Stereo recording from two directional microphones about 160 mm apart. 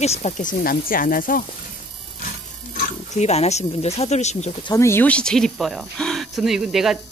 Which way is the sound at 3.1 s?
45° left (ahead or behind).